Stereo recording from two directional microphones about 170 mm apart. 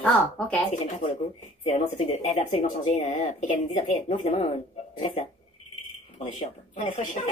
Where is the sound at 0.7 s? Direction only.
45° left (ahead or behind).